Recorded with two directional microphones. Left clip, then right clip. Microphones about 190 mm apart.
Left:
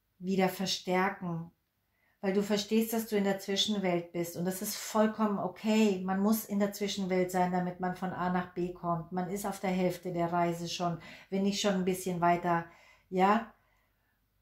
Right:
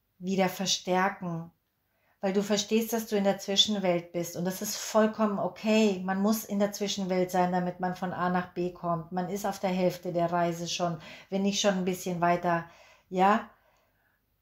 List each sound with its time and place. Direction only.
0.2 s speech: 35° right (ahead or behind)